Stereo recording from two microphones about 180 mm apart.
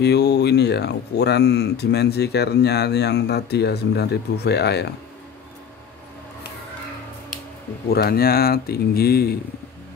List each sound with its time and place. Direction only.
0.0 s speech: 65° left (ahead or behind)
7.9 s speech: 60° left (ahead or behind)